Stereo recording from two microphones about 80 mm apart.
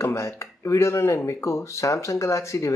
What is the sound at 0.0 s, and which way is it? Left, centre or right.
Speech, left.